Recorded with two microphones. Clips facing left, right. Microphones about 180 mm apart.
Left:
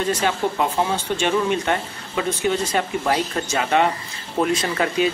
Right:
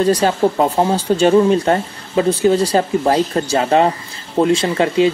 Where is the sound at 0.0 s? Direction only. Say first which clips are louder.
Right 7 dB; 35° right (ahead or behind).